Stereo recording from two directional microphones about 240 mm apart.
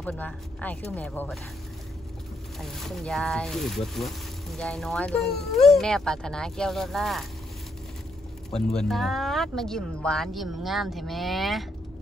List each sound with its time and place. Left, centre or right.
0.0 s speech: centre
2.6 s speech: centre
8.5 s speech: centre